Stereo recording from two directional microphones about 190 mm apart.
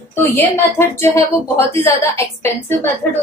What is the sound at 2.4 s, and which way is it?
Speech, 10° left (ahead or behind).